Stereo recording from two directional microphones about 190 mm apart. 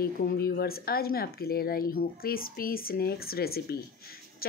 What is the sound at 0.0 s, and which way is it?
Speech, 50° left (ahead or behind).